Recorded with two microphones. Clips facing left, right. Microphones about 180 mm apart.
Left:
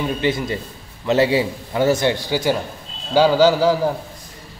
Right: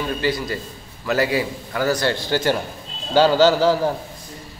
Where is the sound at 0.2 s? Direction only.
20° left (ahead or behind); by 3.9 s 5° left (ahead or behind).